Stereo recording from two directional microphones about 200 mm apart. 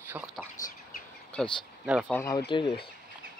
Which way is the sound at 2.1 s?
15° left (ahead or behind).